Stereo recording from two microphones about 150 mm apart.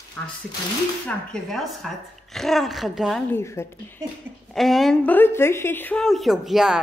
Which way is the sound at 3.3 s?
15° left (ahead or behind).